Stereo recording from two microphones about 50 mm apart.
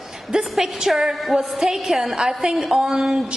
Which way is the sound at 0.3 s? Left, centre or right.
Centre.